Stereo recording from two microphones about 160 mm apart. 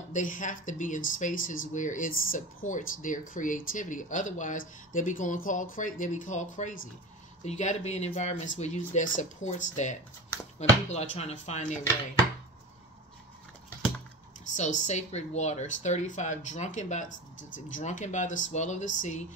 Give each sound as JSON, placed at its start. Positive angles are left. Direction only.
{"t": 0.1, "sound": "speech", "side_deg": 55}
{"t": 14.5, "sound": "speech", "side_deg": 50}